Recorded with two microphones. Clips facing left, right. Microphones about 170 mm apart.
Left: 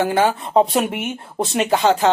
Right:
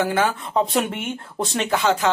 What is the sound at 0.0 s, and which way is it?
Speech, 35° left (ahead or behind).